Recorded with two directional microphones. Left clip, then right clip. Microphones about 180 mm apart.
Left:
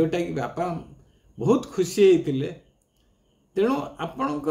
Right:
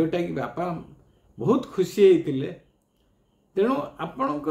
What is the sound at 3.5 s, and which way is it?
Speech, 15° left (ahead or behind).